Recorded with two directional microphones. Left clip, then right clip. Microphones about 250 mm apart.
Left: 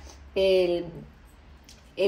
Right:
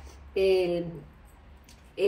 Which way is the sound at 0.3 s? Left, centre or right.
Left.